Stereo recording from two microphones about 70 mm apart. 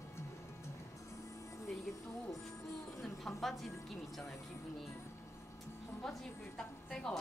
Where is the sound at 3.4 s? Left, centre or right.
Centre.